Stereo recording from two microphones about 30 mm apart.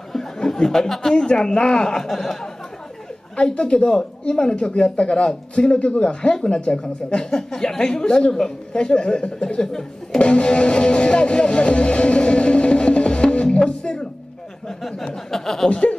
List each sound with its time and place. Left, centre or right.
0.4 s speech: left
1.1 s speech: left
2.0 s speech: centre
3.6 s speech: left
8.7 s speech: left
9.6 s speech: centre
10.1 s music: left
14.8 s speech: centre
15.7 s speech: left